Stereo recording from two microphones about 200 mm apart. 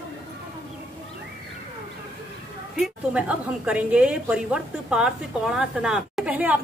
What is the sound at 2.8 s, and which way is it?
A woman's voice, 5° right (ahead or behind).